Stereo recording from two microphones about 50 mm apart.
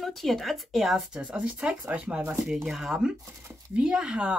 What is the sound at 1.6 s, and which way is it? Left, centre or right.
Speech, right.